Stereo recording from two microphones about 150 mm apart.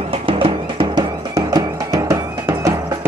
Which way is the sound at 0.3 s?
35° right (ahead or behind).